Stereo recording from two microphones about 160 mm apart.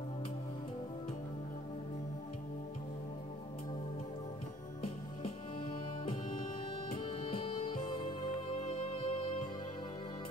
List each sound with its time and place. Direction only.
4.8 s music: 35° left (ahead or behind)